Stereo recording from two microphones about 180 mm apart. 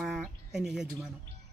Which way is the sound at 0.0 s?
Centre (ahead or behind).